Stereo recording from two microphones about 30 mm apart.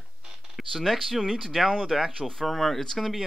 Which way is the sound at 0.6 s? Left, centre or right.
Centre.